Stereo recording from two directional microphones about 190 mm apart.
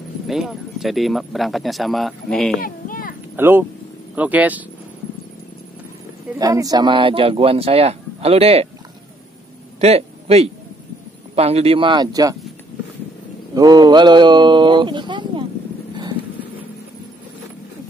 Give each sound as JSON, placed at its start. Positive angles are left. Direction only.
{"t": 0.3, "sound": "speech", "side_deg": 0}
{"t": 2.6, "sound": "a sound", "side_deg": 50}
{"t": 3.3, "sound": "speech", "side_deg": -10}
{"t": 6.3, "sound": "speech", "side_deg": -20}
{"t": 9.8, "sound": "a sound", "side_deg": -35}
{"t": 11.3, "sound": "speech", "side_deg": -30}
{"t": 13.6, "sound": "speech", "side_deg": -20}